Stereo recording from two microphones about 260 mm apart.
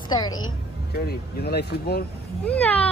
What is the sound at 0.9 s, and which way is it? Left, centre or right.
Speech, left.